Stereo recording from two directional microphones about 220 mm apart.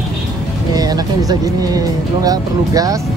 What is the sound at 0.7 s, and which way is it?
Speech, 15° right (ahead or behind).